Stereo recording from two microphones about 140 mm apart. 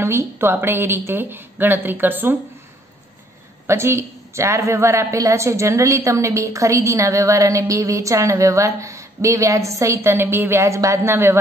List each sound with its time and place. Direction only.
0.0 s a woman's voice: 20° right (ahead or behind)
3.6 s a woman's voice: 20° right (ahead or behind)